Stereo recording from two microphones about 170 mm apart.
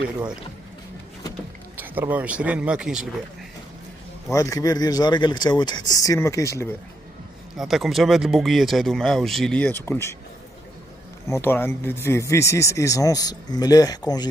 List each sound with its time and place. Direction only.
1.8 s speech: 10° right (ahead or behind)
4.3 s speech: 20° left (ahead or behind)
7.5 s speech: centre (ahead or behind)
11.2 s speech: 15° left (ahead or behind)